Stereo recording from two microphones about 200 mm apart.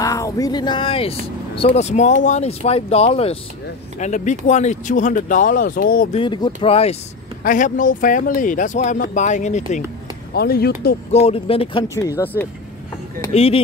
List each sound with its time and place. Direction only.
0.0 s speech: 15° left (ahead or behind); by 6.0 s 45° left (ahead or behind)
6.1 s speech: 25° left (ahead or behind)
7.4 s speech: 40° left (ahead or behind)
10.3 s speech: 50° left (ahead or behind)
11.1 s speech: 30° left (ahead or behind)
12.2 s speech: 10° left (ahead or behind)
13.3 s speech: 30° left (ahead or behind)